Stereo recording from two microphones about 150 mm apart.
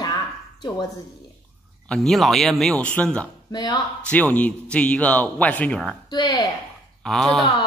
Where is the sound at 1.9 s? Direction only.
Centre (ahead or behind).